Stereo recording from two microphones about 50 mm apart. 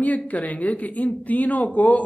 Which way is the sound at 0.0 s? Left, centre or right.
Left.